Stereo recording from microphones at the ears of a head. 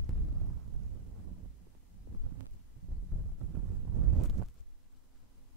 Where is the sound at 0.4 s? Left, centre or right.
Right.